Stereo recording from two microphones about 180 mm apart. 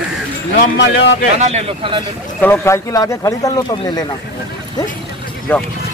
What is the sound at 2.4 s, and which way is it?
Speech, 15° left (ahead or behind).